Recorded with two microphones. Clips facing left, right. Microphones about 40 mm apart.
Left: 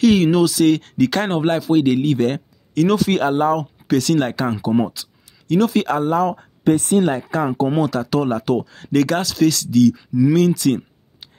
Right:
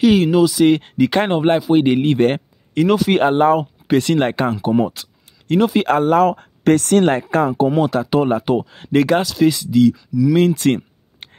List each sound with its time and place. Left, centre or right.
0.0 s speech: centre
0.7 s speech: right
2.8 s speech: centre
3.2 s speech: right
5.0 s a sound: right
5.6 s speech: right
5.9 s speech: right
6.6 s speech: right
7.1 s speech: right
7.8 s speech: right
9.9 s speech: left
10.3 s a sound: right